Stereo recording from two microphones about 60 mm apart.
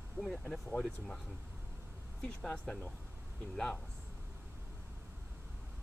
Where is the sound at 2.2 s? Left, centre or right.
Centre.